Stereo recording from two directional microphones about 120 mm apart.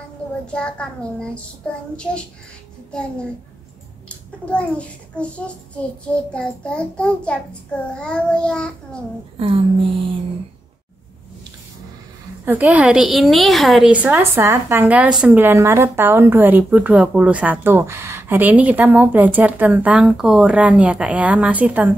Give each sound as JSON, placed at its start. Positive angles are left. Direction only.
{"t": 0.5, "sound": "a child's voice", "side_deg": 10}
{"t": 2.9, "sound": "a child's voice", "side_deg": 10}
{"t": 4.5, "sound": "a child's voice", "side_deg": 10}
{"t": 9.4, "sound": "a sound", "side_deg": -50}
{"t": 12.4, "sound": "a woman's voice", "side_deg": -15}
{"t": 14.1, "sound": "a woman's voice", "side_deg": -20}